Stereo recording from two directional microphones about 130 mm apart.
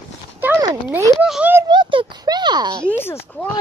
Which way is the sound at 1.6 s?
35° right (ahead or behind).